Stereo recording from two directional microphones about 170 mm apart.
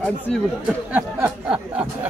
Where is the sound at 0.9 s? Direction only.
10° right (ahead or behind).